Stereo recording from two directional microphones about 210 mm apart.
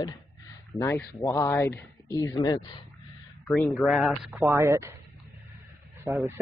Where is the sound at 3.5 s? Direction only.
5° left (ahead or behind).